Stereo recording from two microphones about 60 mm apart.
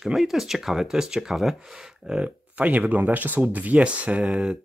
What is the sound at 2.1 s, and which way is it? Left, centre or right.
Speech, centre.